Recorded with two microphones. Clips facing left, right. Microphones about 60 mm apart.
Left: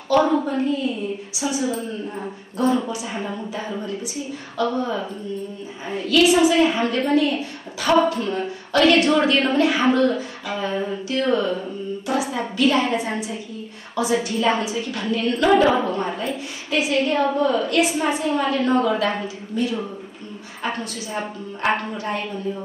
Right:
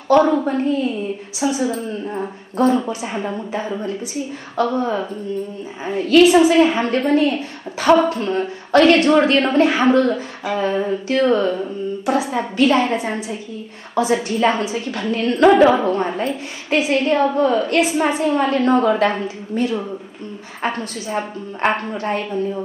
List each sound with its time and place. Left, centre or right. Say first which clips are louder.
0.1 s a woman's voice: right 4 dB; right